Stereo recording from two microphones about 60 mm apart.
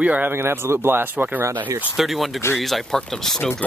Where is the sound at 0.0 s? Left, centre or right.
Right.